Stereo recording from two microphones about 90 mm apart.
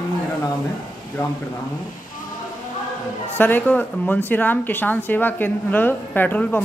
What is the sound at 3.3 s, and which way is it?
A woman's voice, 20° left (ahead or behind).